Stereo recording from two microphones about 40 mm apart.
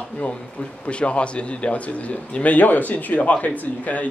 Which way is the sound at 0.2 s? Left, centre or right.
Left.